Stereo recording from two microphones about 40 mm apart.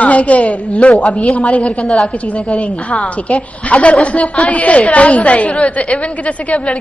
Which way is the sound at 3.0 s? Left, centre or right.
Left.